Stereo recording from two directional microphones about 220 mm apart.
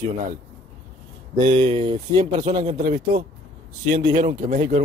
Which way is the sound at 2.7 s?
40° right (ahead or behind).